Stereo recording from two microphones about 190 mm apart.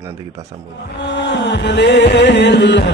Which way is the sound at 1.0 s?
65° left (ahead or behind).